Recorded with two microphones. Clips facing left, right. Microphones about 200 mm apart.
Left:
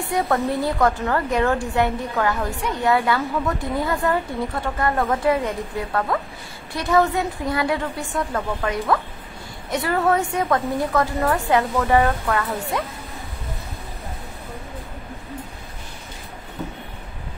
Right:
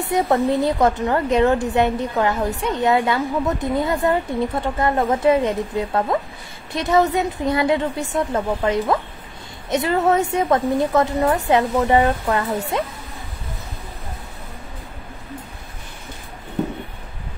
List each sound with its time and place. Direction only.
0.0 s a woman's voice: 20° right (ahead or behind)